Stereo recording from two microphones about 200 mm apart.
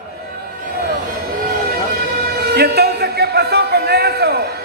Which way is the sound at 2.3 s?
50° right (ahead or behind).